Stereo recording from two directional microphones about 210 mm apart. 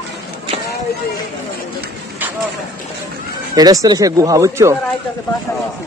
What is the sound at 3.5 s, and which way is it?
Speech, 15° right (ahead or behind).